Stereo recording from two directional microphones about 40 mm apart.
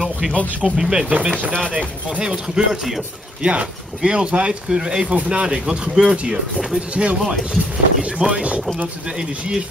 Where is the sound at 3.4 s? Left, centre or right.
Right.